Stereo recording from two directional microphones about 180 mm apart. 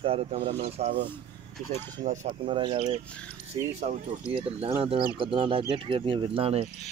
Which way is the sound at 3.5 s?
35° right (ahead or behind).